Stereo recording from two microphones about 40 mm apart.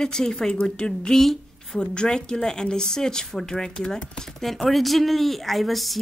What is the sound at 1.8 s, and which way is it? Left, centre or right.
Speech, left.